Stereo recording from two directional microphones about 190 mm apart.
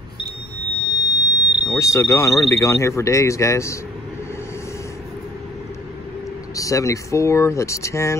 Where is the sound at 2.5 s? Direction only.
15° left (ahead or behind).